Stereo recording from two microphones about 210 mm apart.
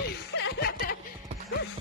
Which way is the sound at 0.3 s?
55° left (ahead or behind).